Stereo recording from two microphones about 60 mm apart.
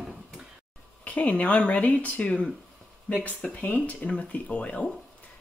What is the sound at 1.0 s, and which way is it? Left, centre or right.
Speech, left.